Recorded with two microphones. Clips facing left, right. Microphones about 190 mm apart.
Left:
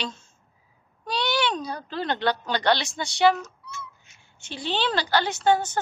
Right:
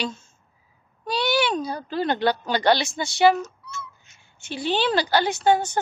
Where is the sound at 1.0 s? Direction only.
5° right (ahead or behind).